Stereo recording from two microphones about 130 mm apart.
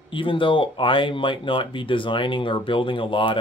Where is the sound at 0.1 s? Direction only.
40° left (ahead or behind).